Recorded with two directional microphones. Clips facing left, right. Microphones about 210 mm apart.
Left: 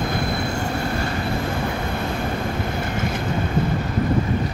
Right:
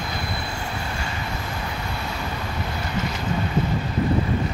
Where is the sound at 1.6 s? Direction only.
50° left (ahead or behind).